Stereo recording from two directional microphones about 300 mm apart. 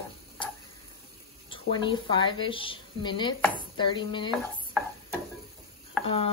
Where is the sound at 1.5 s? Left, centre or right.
Centre.